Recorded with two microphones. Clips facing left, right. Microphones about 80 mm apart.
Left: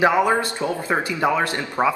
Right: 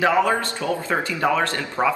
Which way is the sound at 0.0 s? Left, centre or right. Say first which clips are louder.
Left 1 dB; left.